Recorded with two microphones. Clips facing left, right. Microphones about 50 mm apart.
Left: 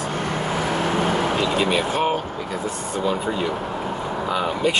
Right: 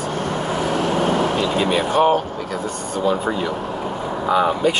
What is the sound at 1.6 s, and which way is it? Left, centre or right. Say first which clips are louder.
Speech: right 4 dB; centre.